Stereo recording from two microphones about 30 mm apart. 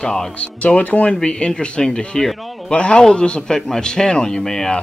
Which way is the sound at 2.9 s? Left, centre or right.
Left.